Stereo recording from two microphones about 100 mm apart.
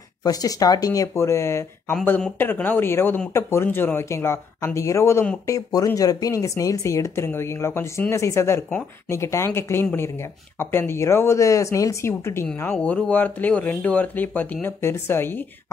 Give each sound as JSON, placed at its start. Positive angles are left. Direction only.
{"t": 0.2, "sound": "speech", "side_deg": 40}
{"t": 12.7, "sound": "speech", "side_deg": 10}